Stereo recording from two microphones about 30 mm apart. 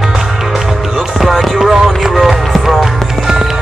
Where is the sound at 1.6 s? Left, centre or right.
Centre.